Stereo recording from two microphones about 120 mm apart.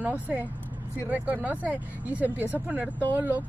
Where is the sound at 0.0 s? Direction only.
15° right (ahead or behind).